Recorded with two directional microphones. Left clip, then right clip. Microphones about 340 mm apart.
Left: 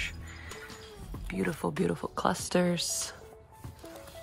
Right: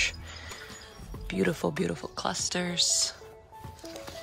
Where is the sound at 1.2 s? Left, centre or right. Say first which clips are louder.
Right 4 dB; centre.